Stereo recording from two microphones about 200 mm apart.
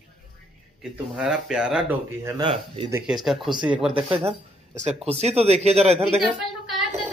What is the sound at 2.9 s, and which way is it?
Speech, 5° right (ahead or behind).